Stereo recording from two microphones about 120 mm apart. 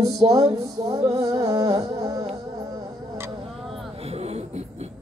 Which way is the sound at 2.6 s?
30° right (ahead or behind).